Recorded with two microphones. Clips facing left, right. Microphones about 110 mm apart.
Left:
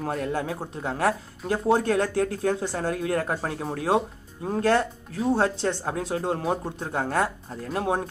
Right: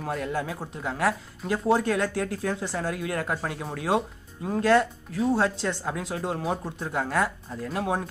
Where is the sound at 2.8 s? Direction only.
35° left (ahead or behind).